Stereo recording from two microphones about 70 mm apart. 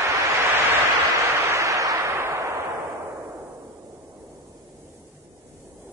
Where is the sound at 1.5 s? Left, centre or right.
Right.